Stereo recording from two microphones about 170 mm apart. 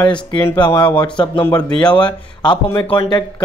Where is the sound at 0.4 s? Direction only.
25° left (ahead or behind).